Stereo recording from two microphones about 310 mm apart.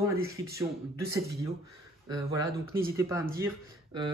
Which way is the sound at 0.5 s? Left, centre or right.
Centre.